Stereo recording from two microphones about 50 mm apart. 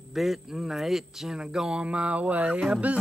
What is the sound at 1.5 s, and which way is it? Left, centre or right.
Music, centre.